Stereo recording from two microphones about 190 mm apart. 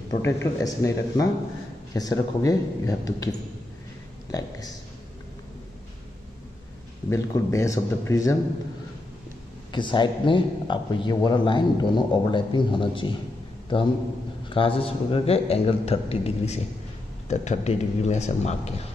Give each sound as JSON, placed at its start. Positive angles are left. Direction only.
{"t": 0.1, "sound": "a man's voice", "side_deg": 15}
{"t": 7.1, "sound": "speech", "side_deg": 15}
{"t": 9.7, "sound": "a man's voice", "side_deg": 25}
{"t": 14.5, "sound": "a man's voice", "side_deg": 30}